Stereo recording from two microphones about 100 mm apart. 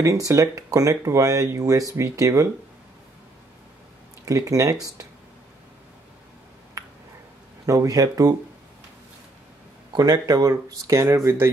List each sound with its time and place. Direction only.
0.0 s speech: 35° right (ahead or behind)
4.3 s speech: 35° right (ahead or behind)
7.6 s speech: 35° right (ahead or behind)
9.9 s speech: 40° right (ahead or behind); by 11.5 s 25° right (ahead or behind)